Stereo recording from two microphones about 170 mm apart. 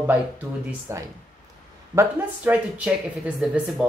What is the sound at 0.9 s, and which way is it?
Speech, 15° right (ahead or behind).